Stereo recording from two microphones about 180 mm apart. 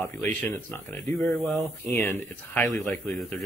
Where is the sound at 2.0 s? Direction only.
10° left (ahead or behind).